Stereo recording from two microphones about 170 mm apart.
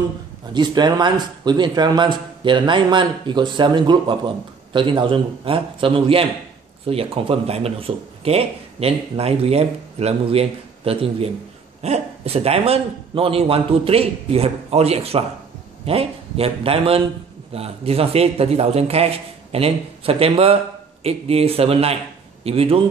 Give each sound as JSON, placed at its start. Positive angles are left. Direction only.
{"t": 0.5, "sound": "a man's voice", "side_deg": -25}